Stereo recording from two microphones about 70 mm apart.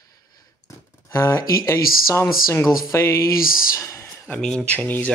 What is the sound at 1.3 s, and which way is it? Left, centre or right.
Speech, left.